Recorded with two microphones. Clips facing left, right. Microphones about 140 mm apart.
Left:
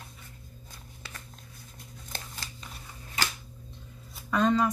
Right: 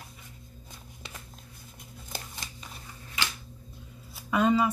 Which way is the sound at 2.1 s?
15° right (ahead or behind).